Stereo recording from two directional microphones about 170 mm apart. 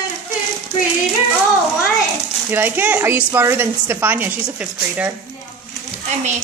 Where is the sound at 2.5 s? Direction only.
10° right (ahead or behind).